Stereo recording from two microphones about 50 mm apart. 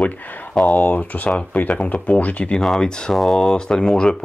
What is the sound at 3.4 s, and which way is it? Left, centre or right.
Speech, centre.